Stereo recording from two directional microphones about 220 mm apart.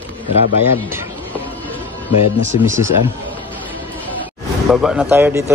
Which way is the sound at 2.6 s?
15° right (ahead or behind).